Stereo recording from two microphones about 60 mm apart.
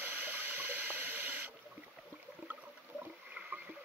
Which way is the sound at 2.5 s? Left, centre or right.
Right.